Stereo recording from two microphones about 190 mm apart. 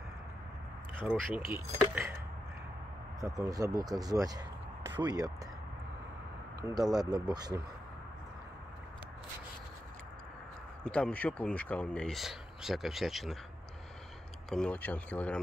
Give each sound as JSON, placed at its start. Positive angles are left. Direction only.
{"t": 0.9, "sound": "speech", "side_deg": -5}
{"t": 3.2, "sound": "speech", "side_deg": -20}
{"t": 6.6, "sound": "speech", "side_deg": -20}
{"t": 10.9, "sound": "speech", "side_deg": 5}
{"t": 14.5, "sound": "speech", "side_deg": 5}